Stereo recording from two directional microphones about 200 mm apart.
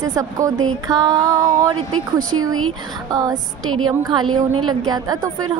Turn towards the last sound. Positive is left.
turn(degrees=-20)  # may be behind; listen again after turning